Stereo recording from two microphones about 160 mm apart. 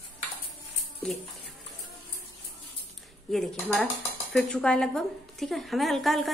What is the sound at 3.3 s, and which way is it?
A woman's voice, centre (ahead or behind).